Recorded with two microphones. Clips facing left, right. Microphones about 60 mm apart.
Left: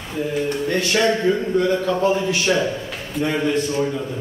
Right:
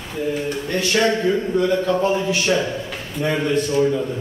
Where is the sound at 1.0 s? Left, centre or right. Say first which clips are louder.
Right 1 dB; centre.